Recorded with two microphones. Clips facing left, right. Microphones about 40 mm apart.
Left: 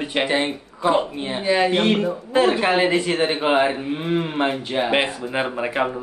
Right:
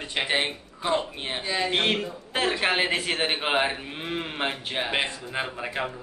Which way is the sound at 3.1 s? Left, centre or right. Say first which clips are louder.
Left 6 dB; centre.